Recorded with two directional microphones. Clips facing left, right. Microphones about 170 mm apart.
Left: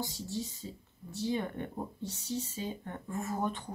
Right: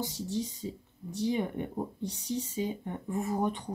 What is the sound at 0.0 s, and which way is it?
Speech, 15° right (ahead or behind).